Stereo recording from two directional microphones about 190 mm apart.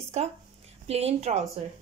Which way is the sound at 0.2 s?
35° right (ahead or behind).